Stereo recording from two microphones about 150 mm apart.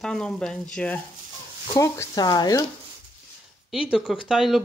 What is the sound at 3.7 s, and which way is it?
Speech, 5° right (ahead or behind).